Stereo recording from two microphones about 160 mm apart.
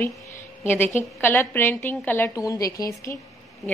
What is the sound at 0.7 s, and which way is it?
A woman's voice, 10° left (ahead or behind).